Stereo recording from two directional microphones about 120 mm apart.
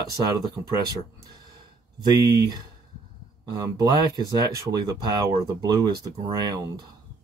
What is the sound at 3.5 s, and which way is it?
Speech, 35° right (ahead or behind).